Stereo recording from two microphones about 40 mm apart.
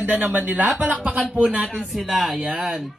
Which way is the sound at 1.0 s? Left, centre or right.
Right.